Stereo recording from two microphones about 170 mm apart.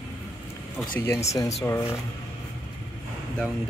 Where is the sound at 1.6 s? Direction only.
15° left (ahead or behind).